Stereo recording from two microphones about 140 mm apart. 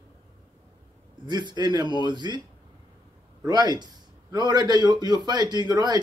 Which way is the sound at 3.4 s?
30° right (ahead or behind).